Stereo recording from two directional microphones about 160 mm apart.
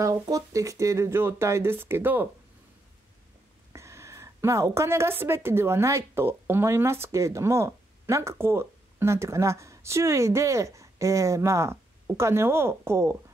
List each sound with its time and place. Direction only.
0.0 s a woman's voice: 20° right (ahead or behind)
3.7 s a sound: 15° right (ahead or behind)
5.2 s a woman's voice: 15° right (ahead or behind)